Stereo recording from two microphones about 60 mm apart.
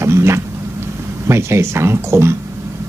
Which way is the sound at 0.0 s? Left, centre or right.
Right.